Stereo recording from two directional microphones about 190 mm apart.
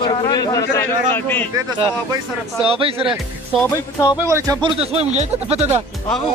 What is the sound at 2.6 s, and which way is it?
Speech, 30° right (ahead or behind).